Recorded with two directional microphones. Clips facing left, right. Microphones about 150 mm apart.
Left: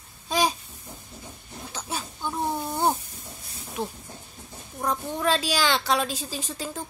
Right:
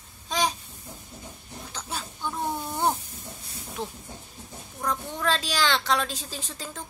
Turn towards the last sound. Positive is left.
turn(degrees=10)  # may be behind; listen again after turning